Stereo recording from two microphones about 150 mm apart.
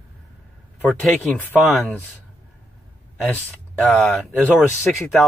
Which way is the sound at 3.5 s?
10° left (ahead or behind).